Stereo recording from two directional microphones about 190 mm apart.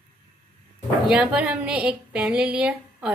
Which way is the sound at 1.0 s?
5° right (ahead or behind).